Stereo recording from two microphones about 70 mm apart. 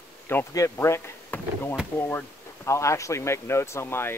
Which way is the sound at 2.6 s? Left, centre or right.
Left.